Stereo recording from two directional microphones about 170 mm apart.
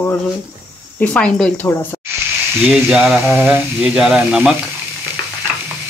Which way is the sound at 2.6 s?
5° right (ahead or behind).